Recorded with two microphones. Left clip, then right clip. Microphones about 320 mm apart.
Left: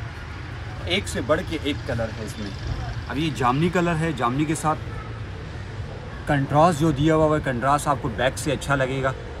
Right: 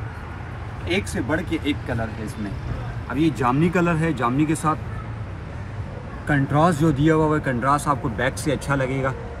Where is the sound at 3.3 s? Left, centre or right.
Centre.